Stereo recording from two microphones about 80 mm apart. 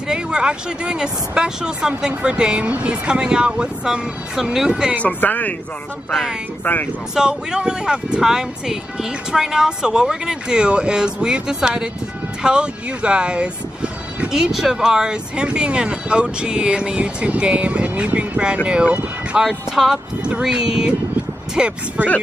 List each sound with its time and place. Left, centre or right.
0.1 s speech: centre
5.0 s speech: centre
6.6 s speech: left
7.2 s speech: centre